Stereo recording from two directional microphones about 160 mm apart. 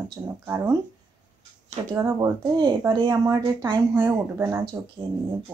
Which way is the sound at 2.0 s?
25° right (ahead or behind).